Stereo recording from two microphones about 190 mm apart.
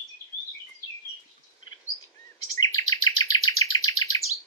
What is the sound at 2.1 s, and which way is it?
Chirp, 20° left (ahead or behind).